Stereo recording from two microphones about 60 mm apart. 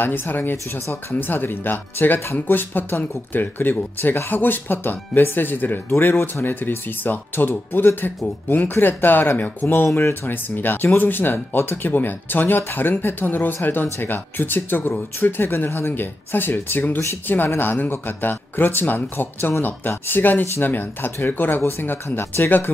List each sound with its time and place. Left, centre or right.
0.0 s speech: left